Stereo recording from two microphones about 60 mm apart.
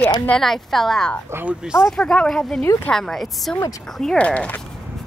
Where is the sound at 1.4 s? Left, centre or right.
Centre.